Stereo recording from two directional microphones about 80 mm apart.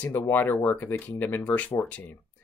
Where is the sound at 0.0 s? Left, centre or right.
Left.